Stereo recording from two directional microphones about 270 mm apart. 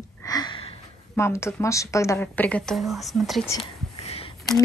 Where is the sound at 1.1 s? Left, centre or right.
Centre.